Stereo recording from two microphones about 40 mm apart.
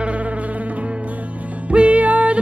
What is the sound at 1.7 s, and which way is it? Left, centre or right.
Music, right.